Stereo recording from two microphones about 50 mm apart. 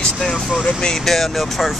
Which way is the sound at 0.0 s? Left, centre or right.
Centre.